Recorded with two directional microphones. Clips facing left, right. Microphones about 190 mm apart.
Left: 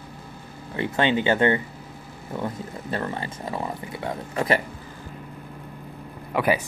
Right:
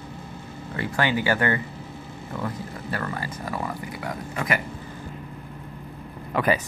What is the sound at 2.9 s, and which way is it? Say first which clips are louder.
Speech: left 2 dB; 25° left (ahead or behind).